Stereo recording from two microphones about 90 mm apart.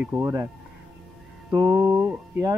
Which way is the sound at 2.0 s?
20° right (ahead or behind).